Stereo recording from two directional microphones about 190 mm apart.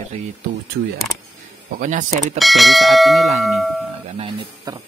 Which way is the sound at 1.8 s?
40° right (ahead or behind).